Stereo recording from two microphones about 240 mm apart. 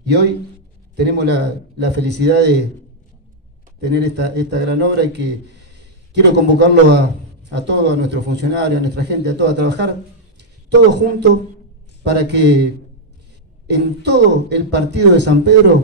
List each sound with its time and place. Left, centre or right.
0.0 s a man's voice: right
3.8 s a man's voice: right
13.7 s a man's voice: right